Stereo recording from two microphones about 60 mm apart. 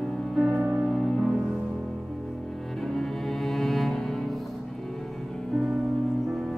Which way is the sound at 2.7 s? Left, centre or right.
Centre.